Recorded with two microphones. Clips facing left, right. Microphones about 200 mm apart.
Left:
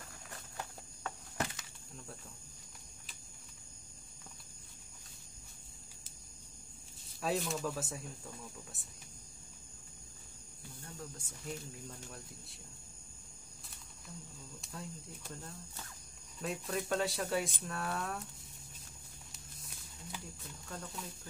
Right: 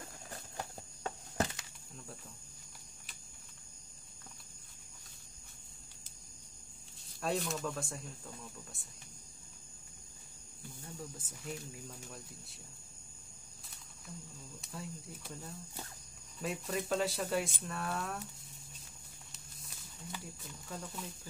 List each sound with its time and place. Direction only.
0.0 s a sound: 30° right (ahead or behind)
7.2 s speech: centre (ahead or behind)
11.0 s speech: 5° right (ahead or behind)
14.6 s speech: centre (ahead or behind)
19.3 s wild animals: centre (ahead or behind)
20.6 s speech: 5° right (ahead or behind)